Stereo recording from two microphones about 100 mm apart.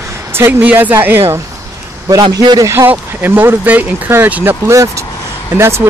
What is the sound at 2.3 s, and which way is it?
Speech, 40° right (ahead or behind).